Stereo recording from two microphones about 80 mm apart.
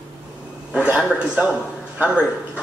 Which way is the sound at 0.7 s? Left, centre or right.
Centre.